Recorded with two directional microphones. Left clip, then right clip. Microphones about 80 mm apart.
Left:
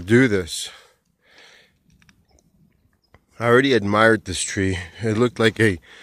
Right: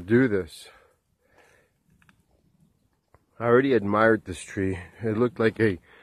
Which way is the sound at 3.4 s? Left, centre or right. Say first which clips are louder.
Left 4 dB; centre.